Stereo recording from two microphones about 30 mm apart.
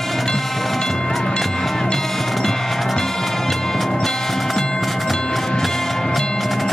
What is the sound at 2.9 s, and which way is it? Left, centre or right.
Music, centre.